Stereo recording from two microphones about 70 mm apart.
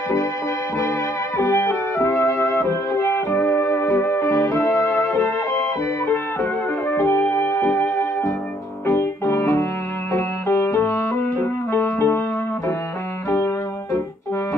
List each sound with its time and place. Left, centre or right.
1.4 s music: left